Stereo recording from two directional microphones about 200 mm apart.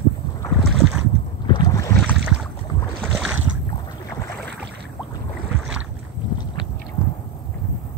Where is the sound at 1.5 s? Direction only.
20° left (ahead or behind).